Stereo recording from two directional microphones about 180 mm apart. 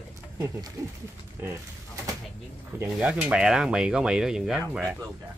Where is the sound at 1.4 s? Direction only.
20° right (ahead or behind).